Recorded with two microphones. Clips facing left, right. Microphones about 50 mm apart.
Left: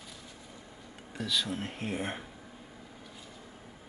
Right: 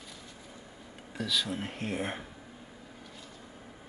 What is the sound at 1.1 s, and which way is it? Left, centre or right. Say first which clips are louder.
Speech: right 1 dB; centre.